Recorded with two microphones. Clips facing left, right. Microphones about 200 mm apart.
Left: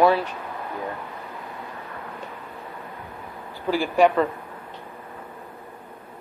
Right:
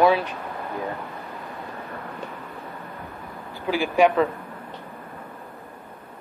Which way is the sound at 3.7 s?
15° right (ahead or behind).